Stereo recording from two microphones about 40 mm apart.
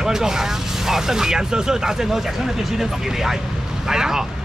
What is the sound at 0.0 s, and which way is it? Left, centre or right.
Speech, centre.